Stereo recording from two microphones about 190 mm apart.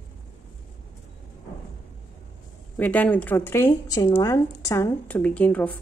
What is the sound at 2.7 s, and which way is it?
Speech, 10° left (ahead or behind).